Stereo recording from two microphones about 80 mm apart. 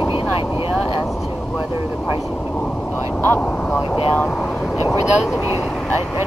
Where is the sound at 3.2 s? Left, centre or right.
Left.